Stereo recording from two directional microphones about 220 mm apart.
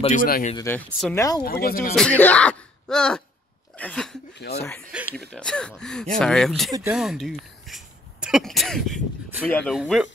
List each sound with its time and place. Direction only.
0.0 s speech: 35° left (ahead or behind)
0.6 s speech: 10° left (ahead or behind)
1.4 s speech: 45° left (ahead or behind)
2.0 s speech: 5° left (ahead or behind)
3.7 s a sound: 5° left (ahead or behind)
4.4 s speech: 45° left (ahead or behind)
4.9 s speech: 5° right (ahead or behind)